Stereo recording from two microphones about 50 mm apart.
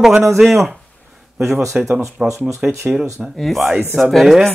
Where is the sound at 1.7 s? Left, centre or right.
Right.